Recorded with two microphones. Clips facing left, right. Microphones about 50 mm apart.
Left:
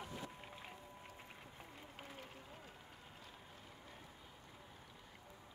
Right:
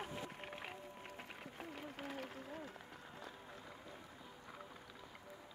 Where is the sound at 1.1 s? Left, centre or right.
Right.